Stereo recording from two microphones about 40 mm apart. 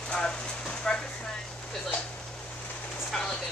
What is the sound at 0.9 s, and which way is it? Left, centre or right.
Chopping, centre.